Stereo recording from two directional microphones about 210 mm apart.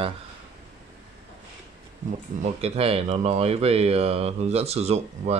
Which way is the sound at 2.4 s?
30° right (ahead or behind).